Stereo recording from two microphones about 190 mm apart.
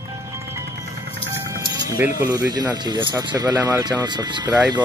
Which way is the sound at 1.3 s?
15° right (ahead or behind).